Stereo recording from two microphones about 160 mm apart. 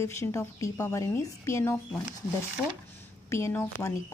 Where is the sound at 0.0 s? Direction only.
20° left (ahead or behind).